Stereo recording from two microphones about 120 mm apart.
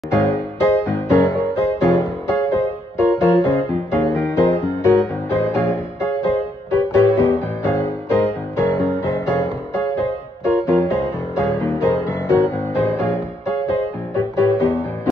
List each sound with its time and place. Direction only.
0.1 s music: 20° left (ahead or behind)